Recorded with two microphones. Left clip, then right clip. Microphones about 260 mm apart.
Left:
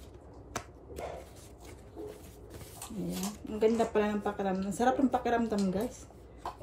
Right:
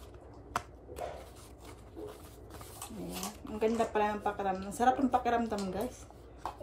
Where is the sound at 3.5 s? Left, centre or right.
Centre.